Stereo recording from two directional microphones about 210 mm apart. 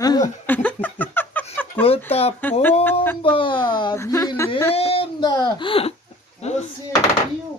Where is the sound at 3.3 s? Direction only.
25° left (ahead or behind).